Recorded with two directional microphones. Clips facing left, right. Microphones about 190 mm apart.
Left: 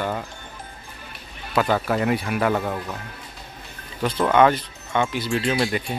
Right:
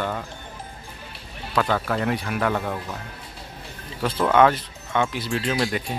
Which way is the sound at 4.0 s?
Centre (ahead or behind).